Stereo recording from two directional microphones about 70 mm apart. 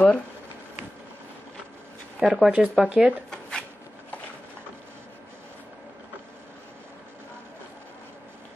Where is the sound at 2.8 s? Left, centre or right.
Centre.